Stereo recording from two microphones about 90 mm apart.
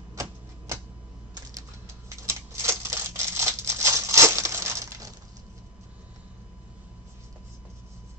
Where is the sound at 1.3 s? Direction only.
35° right (ahead or behind).